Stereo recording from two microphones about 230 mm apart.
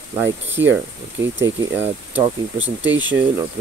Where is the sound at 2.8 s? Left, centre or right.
Right.